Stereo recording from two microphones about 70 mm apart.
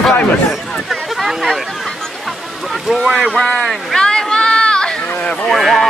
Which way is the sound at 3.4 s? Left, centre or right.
Centre.